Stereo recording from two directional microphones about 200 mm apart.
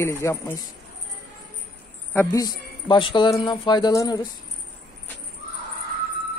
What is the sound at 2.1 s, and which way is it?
Speech, 15° left (ahead or behind).